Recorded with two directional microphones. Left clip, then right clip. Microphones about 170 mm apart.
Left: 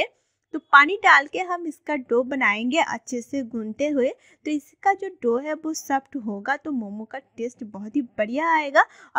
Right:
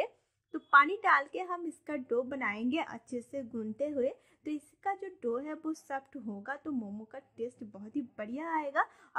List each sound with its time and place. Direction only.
0.0 s a woman's voice: 40° left (ahead or behind)